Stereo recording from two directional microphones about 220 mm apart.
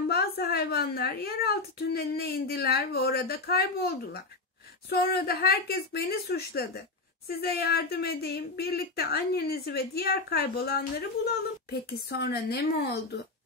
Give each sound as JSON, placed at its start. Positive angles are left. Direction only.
{"t": 0.1, "sound": "a woman's voice", "side_deg": 45}
{"t": 12.1, "sound": "a woman's voice", "side_deg": 45}